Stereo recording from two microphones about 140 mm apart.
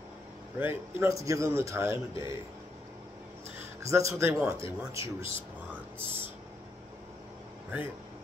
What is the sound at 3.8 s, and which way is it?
Speech, 20° right (ahead or behind).